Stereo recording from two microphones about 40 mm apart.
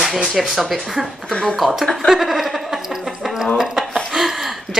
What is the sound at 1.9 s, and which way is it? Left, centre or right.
Laughter, centre.